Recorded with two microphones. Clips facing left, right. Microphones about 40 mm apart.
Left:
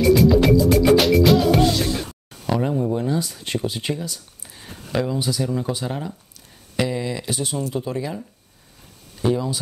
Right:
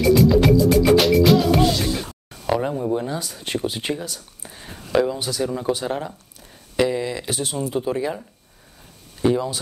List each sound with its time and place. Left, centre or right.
0.0 s music: centre
2.4 s a sound: centre
4.9 s speech: centre